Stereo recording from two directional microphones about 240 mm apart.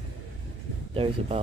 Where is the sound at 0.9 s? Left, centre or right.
Right.